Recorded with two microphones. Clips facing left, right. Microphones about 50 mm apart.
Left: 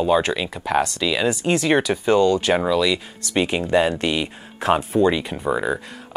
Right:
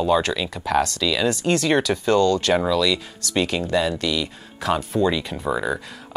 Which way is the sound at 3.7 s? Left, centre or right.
Left.